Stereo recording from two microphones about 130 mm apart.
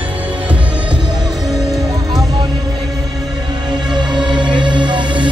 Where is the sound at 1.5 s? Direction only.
30° right (ahead or behind).